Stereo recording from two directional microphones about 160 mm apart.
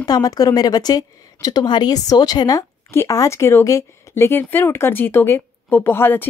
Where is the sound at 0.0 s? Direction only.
25° left (ahead or behind).